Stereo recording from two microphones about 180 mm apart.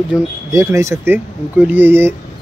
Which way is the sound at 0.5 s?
15° right (ahead or behind).